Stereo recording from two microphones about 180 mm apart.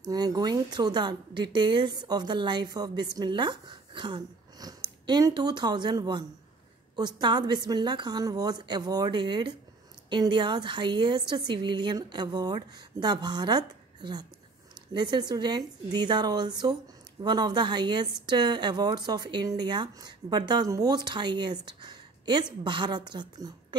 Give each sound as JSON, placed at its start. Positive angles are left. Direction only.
{"t": 0.1, "sound": "a woman's voice", "side_deg": -20}